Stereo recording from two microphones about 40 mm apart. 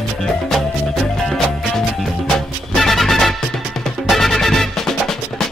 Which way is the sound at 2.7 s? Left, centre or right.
Centre.